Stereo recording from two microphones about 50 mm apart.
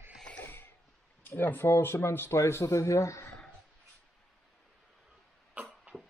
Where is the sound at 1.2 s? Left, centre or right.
Left.